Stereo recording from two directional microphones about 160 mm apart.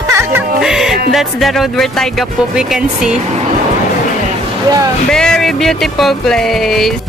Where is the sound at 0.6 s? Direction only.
Centre (ahead or behind).